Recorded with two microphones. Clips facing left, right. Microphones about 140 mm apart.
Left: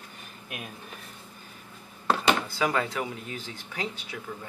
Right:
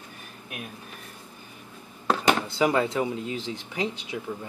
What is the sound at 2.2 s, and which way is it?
Speech, 20° right (ahead or behind).